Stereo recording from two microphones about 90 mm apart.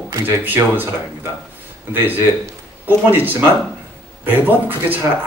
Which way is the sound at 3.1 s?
20° right (ahead or behind).